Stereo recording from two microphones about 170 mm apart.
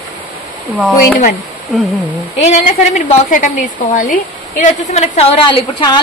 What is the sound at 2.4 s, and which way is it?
Speech, 45° left (ahead or behind).